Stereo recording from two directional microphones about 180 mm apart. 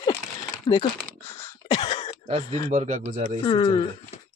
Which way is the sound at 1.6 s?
25° left (ahead or behind).